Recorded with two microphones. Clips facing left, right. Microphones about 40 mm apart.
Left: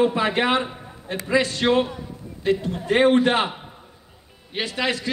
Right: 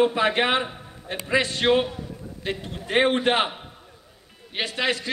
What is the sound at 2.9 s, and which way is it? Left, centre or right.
Speech, right.